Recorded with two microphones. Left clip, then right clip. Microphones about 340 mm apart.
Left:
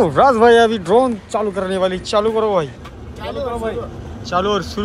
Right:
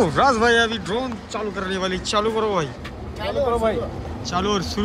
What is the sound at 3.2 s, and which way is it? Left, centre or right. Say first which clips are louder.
Speech: right 2 dB; right.